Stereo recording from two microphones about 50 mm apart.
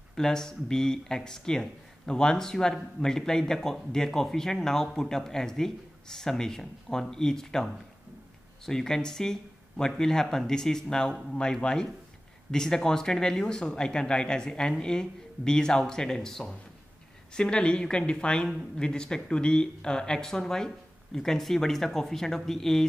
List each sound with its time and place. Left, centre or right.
0.1 s speech: centre